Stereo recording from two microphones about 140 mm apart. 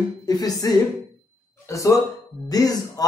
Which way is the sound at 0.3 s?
25° left (ahead or behind).